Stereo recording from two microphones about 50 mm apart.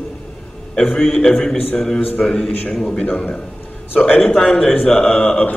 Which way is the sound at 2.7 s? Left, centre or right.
Centre.